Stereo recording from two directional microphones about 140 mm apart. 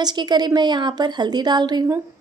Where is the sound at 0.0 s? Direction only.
30° right (ahead or behind).